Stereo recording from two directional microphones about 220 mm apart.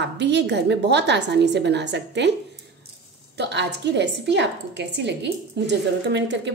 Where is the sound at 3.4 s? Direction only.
50° right (ahead or behind).